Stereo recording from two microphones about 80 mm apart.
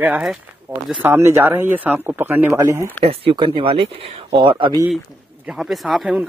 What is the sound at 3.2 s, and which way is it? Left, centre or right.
Speech, right.